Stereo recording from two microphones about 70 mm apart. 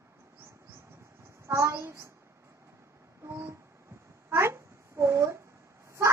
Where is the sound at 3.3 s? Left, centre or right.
Right.